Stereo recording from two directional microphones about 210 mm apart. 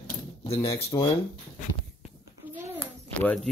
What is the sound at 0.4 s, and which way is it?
Speech, 25° left (ahead or behind).